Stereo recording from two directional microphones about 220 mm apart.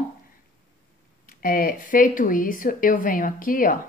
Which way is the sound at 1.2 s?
40° left (ahead or behind).